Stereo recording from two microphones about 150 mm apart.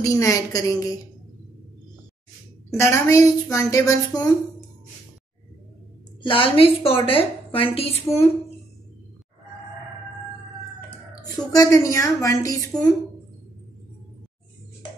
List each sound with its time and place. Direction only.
0.0 s a woman's voice: 20° left (ahead or behind)
2.8 s a woman's voice: 20° left (ahead or behind)
6.2 s a woman's voice: 35° left (ahead or behind)
11.1 s a woman's voice: 25° left (ahead or behind)